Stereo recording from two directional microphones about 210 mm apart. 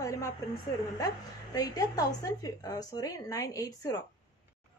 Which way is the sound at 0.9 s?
15° left (ahead or behind).